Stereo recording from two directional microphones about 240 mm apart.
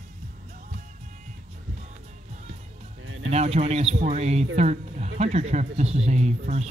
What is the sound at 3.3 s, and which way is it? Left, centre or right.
Speech, right.